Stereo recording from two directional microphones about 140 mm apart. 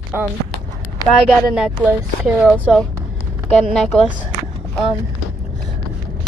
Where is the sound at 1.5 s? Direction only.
5° right (ahead or behind).